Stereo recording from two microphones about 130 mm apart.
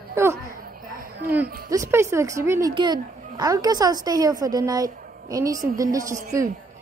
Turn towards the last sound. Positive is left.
turn(degrees=-25)  # may be behind; listen again after turning